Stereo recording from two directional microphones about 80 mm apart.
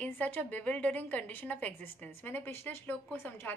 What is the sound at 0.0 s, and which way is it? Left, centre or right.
A woman's voice, centre.